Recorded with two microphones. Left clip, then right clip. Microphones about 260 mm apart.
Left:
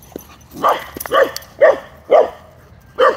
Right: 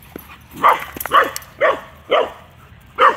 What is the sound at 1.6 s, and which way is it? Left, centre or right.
Dog, centre.